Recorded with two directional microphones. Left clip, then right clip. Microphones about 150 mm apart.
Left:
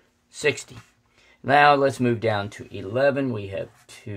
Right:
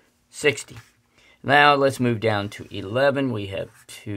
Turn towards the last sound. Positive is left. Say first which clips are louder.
# right 4 dB
turn(degrees=-25)  # may be behind; listen again after turning